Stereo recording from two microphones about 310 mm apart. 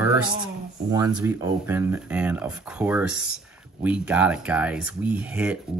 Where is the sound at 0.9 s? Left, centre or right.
Centre.